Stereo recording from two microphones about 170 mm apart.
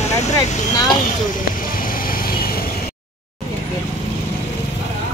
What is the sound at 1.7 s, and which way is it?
Vehicle, 55° left (ahead or behind).